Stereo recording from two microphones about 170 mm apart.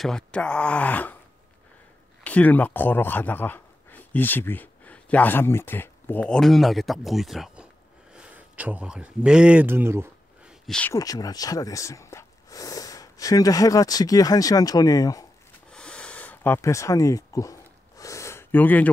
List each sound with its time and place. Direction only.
0.0 s speech: 5° left (ahead or behind)
2.2 s speech: 10° left (ahead or behind); by 10.0 s 15° right (ahead or behind)
10.7 s speech: 10° left (ahead or behind)
11.0 s speech: 20° left (ahead or behind)
15.7 s a sound: 5° left (ahead or behind)